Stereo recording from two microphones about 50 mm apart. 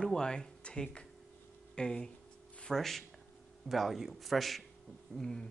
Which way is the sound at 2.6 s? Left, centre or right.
Centre.